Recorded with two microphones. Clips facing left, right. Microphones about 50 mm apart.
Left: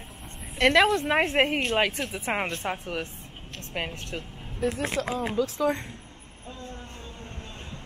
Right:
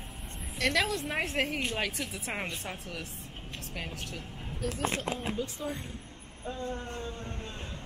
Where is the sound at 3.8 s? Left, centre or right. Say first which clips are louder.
Left 4 dB; left.